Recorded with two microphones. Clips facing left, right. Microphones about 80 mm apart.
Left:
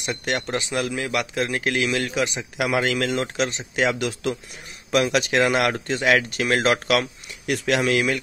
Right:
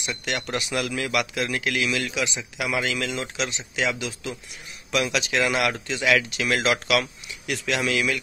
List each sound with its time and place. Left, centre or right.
0.0 s a man's voice: left
0.5 s a man's voice: left
4.9 s a man's voice: left